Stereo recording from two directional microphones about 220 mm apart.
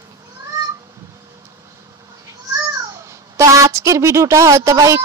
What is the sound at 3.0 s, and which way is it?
A woman's voice, 15° right (ahead or behind).